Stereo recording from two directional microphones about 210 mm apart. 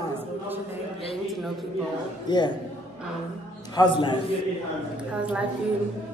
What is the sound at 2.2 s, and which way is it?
Speech, 20° left (ahead or behind).